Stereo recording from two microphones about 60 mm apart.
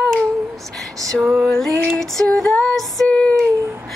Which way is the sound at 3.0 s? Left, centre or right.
Centre.